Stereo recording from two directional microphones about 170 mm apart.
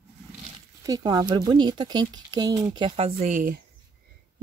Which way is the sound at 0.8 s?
20° right (ahead or behind).